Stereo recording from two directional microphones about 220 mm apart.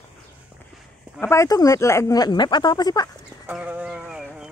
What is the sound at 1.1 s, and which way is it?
Speech, 10° left (ahead or behind).